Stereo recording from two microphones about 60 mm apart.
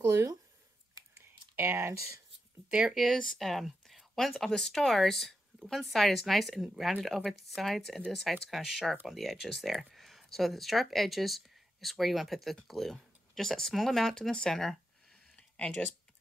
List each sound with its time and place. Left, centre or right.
0.0 s speech: right
1.6 s speech: right
2.9 s speech: centre
15.3 s a sound: centre